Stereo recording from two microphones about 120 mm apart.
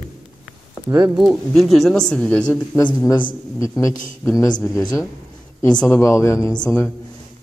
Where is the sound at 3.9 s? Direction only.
90° left.